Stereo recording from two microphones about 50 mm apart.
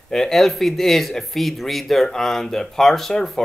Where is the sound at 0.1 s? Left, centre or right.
Centre.